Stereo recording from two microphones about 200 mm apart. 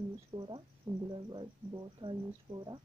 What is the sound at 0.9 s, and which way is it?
Speech, centre (ahead or behind).